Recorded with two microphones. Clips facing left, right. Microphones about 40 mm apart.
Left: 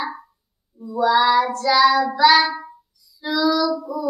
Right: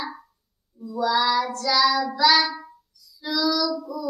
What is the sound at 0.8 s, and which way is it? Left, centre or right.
Child singing, centre.